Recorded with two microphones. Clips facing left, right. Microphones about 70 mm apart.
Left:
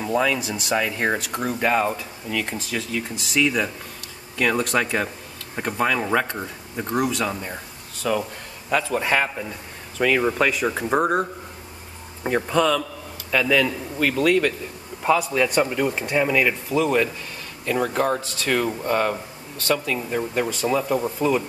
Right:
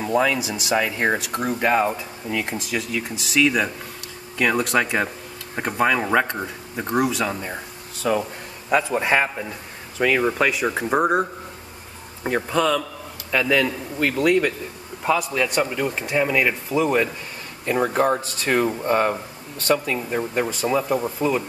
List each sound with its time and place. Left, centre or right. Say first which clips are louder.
0.0 s speech: right 1 dB; centre
4.4 s a man's voice: right 1 dB; centre
15.0 s a man's voice: left 2 dB; centre
17.6 s speech: right 2 dB; right; by 21.5 s centre